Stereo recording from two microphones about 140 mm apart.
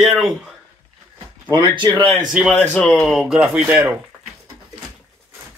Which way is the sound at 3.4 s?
10° right (ahead or behind).